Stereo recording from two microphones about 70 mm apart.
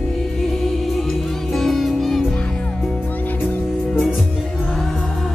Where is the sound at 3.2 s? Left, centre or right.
Left.